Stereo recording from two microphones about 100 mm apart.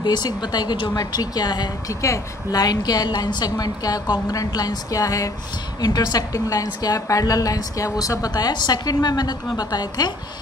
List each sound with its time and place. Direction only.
0.0 s a woman's voice: 45° left (ahead or behind)
0.9 s a woman's voice: 40° left (ahead or behind)